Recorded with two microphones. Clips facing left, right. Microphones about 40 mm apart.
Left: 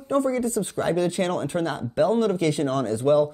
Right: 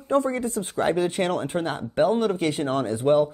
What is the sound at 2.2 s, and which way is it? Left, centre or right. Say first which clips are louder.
Speech: left 1 dB; right.